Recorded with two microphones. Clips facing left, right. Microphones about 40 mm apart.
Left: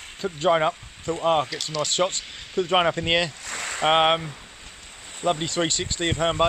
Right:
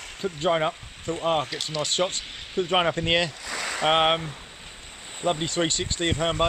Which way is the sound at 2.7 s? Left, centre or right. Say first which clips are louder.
Left 2 dB; centre.